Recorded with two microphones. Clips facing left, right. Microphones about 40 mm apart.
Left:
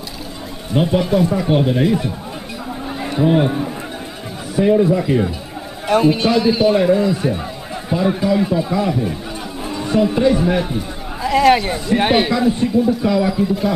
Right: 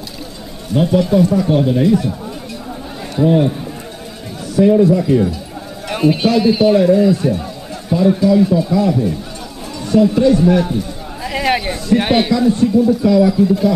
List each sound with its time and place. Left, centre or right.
0.7 s speech: centre
5.9 s a man's voice: centre
6.7 s a man's voice: centre
11.2 s a sound: centre
11.7 s a man's voice: centre